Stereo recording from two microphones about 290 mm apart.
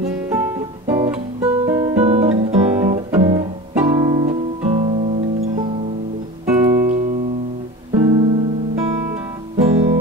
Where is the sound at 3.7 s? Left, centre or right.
Centre; by 7.1 s right.